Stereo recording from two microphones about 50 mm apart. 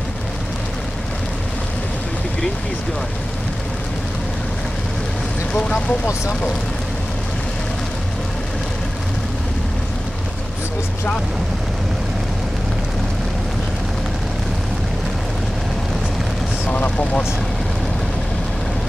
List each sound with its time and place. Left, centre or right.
5.5 s speech: centre
16.6 s speech: left